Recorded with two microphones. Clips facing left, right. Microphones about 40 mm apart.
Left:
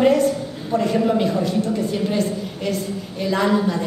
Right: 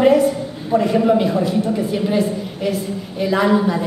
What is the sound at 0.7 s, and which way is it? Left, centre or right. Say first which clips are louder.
A woman's voice: right 4 dB; centre.